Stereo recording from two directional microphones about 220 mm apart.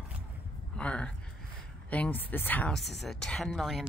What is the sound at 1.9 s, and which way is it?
A woman's voice, 5° left (ahead or behind).